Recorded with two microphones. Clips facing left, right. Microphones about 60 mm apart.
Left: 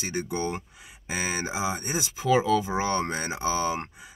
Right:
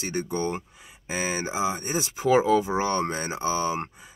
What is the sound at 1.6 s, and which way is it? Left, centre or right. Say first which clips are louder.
Speech: right 2 dB; left.